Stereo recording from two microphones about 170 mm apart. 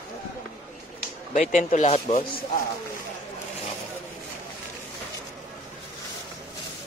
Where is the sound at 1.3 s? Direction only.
45° left (ahead or behind).